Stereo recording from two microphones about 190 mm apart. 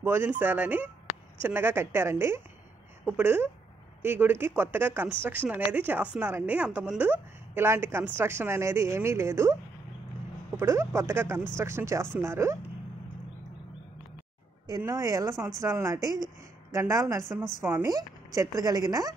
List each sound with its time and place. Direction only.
0.0 s a woman's voice: 10° right (ahead or behind)
10.6 s a woman's voice: 15° right (ahead or behind)
14.8 s a woman's voice: 15° right (ahead or behind)